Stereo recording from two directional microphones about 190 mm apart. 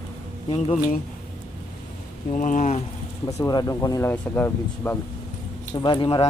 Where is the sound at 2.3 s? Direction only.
40° left (ahead or behind).